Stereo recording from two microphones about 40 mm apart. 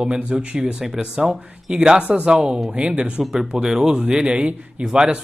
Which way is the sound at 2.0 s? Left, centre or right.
Right.